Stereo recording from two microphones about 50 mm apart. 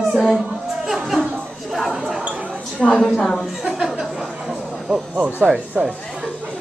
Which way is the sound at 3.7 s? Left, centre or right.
Centre.